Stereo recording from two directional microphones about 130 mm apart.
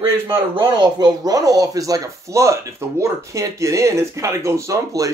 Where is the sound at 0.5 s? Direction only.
35° right (ahead or behind).